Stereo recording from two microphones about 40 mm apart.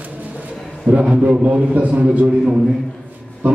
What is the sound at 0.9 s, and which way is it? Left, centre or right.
A man's voice, right.